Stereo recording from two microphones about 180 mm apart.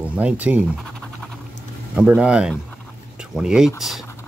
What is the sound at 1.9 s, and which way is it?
Speech, 5° right (ahead or behind).